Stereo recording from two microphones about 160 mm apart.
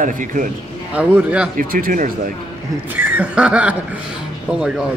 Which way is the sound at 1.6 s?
60° right (ahead or behind).